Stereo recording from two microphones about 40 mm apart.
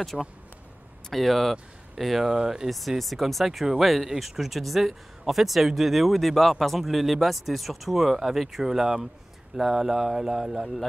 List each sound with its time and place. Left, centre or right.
0.1 s speech: centre
2.3 s speech: centre
3.0 s speech: centre
3.6 s speech: centre